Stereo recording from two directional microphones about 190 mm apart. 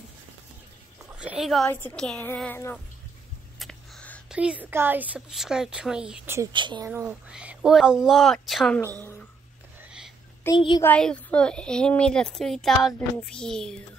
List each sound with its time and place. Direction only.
1.0 s speech: 5° right (ahead or behind)
1.7 s a woman's voice: 10° left (ahead or behind)
3.5 s a sound: centre (ahead or behind)
4.3 s a woman's voice: 5° right (ahead or behind)
6.5 s a woman's voice: 25° right (ahead or behind)
6.9 s a woman's voice: 5° right (ahead or behind)
10.4 s a woman's voice: 25° left (ahead or behind)
10.8 s a woman's voice: 5° left (ahead or behind)